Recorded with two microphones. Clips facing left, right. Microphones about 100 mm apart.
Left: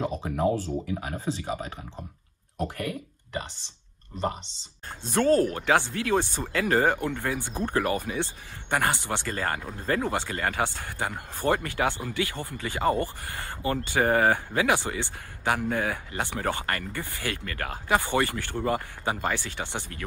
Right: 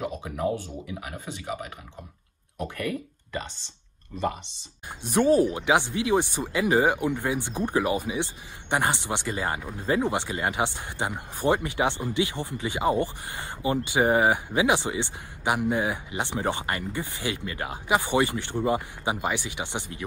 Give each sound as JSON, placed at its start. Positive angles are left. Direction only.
{"t": 0.0, "sound": "speech", "side_deg": 30}
{"t": 2.7, "sound": "speech", "side_deg": 25}
{"t": 5.0, "sound": "speech", "side_deg": -15}